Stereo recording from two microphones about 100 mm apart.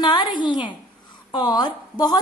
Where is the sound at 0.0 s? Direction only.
50° left (ahead or behind).